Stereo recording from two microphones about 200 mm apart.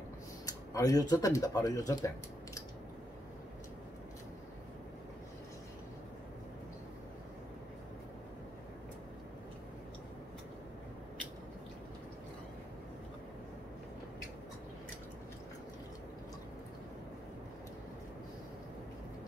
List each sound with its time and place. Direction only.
0.5 s speech: 20° left (ahead or behind)